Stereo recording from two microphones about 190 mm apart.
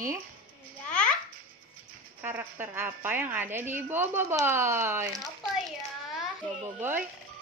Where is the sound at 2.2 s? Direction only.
10° right (ahead or behind).